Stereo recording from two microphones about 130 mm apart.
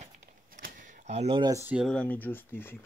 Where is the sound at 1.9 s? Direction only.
10° left (ahead or behind).